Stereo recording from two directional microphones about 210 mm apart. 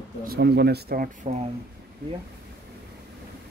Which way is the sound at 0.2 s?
50° right (ahead or behind).